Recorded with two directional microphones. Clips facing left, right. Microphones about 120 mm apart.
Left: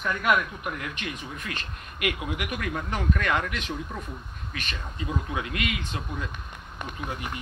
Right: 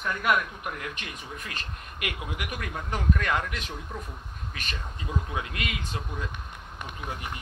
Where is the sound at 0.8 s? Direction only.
35° right (ahead or behind).